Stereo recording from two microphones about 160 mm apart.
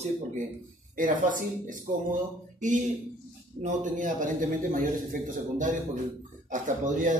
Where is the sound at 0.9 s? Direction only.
55° right (ahead or behind).